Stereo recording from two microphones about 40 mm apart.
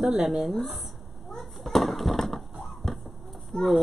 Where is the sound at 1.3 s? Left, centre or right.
Centre.